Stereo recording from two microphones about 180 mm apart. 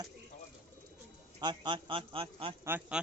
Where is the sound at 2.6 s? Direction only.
10° right (ahead or behind).